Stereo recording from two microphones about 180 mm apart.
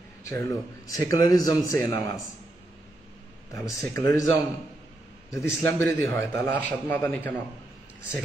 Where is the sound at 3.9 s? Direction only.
15° left (ahead or behind).